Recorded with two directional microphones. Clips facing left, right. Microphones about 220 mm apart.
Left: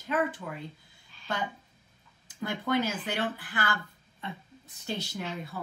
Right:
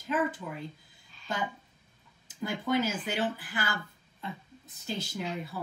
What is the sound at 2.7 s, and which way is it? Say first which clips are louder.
Speech: even; 5° right (ahead or behind).